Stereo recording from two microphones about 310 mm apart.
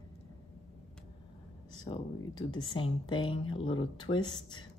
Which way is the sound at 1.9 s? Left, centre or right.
Centre.